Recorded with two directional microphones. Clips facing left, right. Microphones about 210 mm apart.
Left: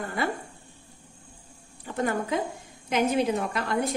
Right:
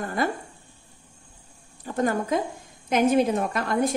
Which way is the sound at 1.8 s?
40° right (ahead or behind).